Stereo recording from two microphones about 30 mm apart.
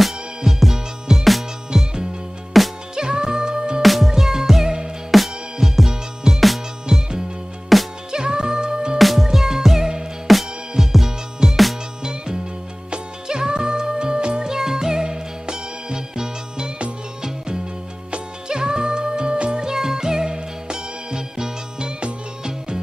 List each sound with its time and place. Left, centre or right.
0.5 s music: centre
3.0 s music: right
3.8 s music: centre
5.9 s music: centre
7.7 s music: centre
8.1 s music: right
8.9 s music: centre
9.8 s music: right
10.3 s music: centre
12.0 s music: right
14.5 s music: centre
18.5 s music: right
19.6 s music: centre